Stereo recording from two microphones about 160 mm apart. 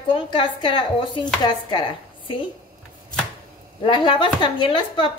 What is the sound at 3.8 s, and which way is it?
A woman's voice, 30° left (ahead or behind).